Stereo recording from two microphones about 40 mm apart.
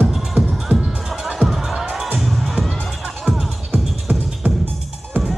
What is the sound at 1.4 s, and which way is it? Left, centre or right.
Music, centre.